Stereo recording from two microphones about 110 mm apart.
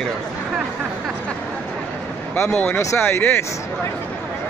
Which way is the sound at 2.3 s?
15° left (ahead or behind).